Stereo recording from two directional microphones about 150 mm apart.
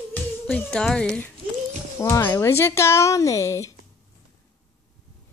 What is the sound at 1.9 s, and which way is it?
Speech, 20° left (ahead or behind).